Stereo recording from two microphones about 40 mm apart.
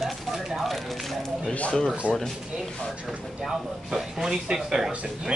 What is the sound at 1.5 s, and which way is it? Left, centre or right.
Speech, left.